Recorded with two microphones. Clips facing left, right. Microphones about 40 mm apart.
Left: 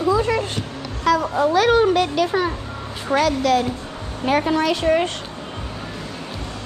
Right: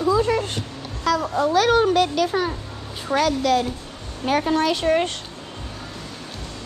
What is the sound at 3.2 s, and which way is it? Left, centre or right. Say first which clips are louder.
A woman's voice: left 1 dB; left.